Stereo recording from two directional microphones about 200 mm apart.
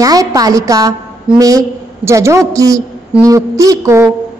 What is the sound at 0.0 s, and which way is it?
Speech, 15° right (ahead or behind).